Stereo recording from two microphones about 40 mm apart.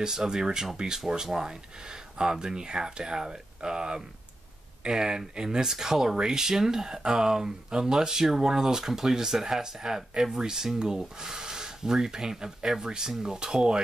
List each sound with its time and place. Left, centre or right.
0.0 s speech: centre